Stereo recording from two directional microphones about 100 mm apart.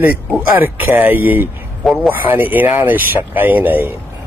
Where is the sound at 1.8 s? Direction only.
Centre (ahead or behind).